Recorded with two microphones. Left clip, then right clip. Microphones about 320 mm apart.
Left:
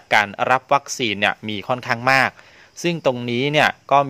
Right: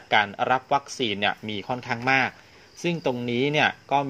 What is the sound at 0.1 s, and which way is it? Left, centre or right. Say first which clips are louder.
A man's voice: left 5 dB; left.